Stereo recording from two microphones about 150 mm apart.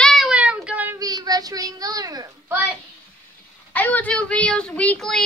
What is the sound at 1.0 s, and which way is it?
A woman's voice, 25° right (ahead or behind).